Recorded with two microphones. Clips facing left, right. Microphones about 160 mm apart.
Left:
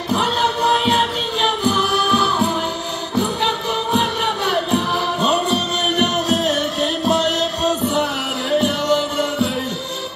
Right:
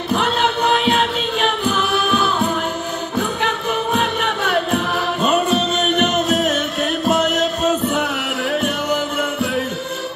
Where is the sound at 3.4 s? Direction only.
5° right (ahead or behind).